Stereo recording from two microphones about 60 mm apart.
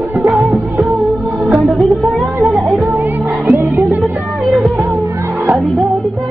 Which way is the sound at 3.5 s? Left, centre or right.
Right.